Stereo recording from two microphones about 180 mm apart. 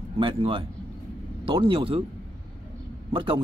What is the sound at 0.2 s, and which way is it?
A man's voice, 30° right (ahead or behind).